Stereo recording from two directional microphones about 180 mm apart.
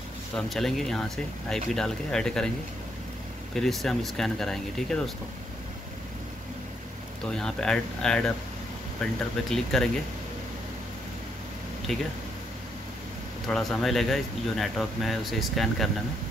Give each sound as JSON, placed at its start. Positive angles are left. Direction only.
{"t": 0.5, "sound": "speech", "side_deg": 0}
{"t": 3.5, "sound": "speech", "side_deg": 0}
{"t": 7.2, "sound": "speech", "side_deg": 5}
{"t": 11.9, "sound": "speech", "side_deg": 0}
{"t": 13.5, "sound": "speech", "side_deg": 0}